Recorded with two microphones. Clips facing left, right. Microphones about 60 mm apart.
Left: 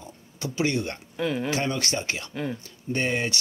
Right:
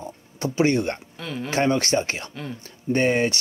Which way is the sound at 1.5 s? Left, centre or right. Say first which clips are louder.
Right 6 dB; right.